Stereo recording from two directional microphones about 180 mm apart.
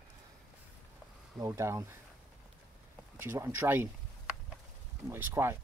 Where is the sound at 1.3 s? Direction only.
15° right (ahead or behind).